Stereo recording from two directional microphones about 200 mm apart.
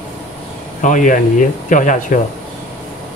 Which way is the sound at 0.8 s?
40° left (ahead or behind).